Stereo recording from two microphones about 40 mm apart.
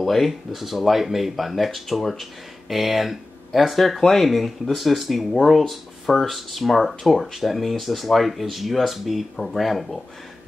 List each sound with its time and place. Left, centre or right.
0.0 s speech: centre